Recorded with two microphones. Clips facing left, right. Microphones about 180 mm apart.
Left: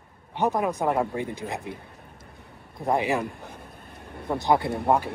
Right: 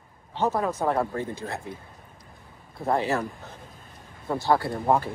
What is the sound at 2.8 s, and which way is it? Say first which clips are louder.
Speech: left 1 dB; 15° left (ahead or behind).